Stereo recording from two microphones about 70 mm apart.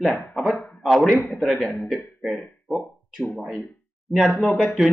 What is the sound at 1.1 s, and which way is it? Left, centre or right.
Speech, left.